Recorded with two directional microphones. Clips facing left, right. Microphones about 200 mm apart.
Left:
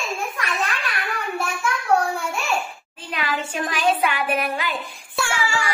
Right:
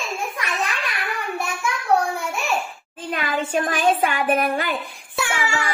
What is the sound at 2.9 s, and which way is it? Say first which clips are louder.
Speech: right 3 dB; 50° right (ahead or behind).